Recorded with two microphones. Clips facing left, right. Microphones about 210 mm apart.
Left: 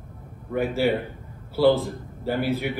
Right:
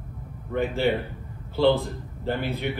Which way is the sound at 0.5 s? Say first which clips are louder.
Left 1 dB; 10° left (ahead or behind).